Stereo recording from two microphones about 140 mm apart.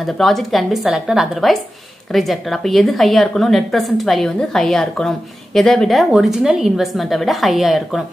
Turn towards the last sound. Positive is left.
turn(degrees=0)  # may be behind; listen again after turning